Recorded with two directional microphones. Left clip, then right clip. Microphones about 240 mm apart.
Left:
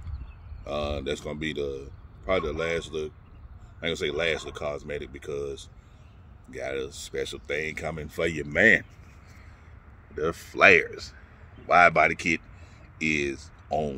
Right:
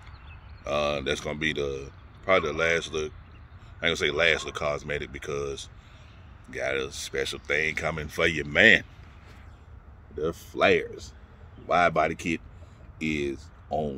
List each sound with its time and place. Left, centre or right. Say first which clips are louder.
0.7 s speech: right 4 dB; centre
10.1 s speech: left 2 dB; centre